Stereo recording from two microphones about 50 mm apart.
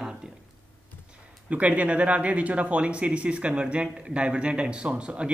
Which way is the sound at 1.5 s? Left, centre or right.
Right.